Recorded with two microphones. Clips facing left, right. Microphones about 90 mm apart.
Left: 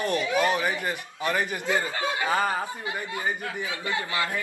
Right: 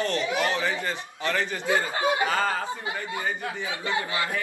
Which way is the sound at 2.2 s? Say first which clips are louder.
Even; 15° left (ahead or behind).